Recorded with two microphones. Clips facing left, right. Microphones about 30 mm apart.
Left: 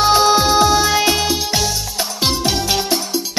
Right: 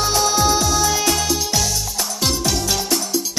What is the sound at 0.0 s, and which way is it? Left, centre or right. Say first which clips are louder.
Music: left 5 dB; left.